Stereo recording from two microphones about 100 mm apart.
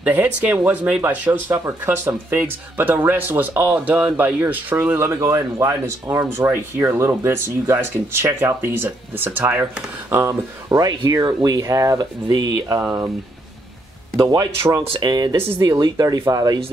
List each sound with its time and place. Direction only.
0.0 s speech: 15° right (ahead or behind)
10.7 s speech: 40° right (ahead or behind)
12.8 s speech: 25° right (ahead or behind)
14.1 s speech: 40° right (ahead or behind)